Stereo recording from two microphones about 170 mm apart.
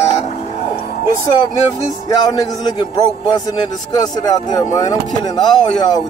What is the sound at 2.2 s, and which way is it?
A man's voice, 20° left (ahead or behind).